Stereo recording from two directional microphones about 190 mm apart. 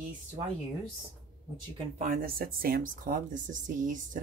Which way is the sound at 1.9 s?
45° right (ahead or behind).